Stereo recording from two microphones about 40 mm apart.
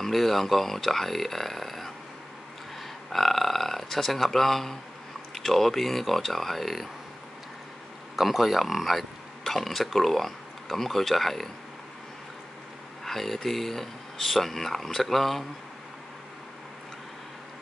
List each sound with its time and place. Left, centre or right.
0.0 s speech: centre
3.1 s a sound: centre
5.3 s speech: centre
8.2 s speech: centre
13.0 s speech: centre